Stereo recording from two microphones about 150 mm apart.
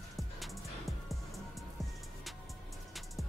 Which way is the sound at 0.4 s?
Centre (ahead or behind).